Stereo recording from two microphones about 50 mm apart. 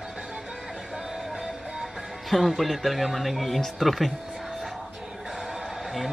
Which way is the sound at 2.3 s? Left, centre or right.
Centre.